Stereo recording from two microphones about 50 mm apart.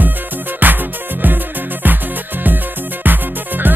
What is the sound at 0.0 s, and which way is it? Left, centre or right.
Music, right.